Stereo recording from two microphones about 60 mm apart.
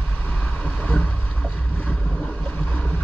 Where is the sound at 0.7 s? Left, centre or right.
Left.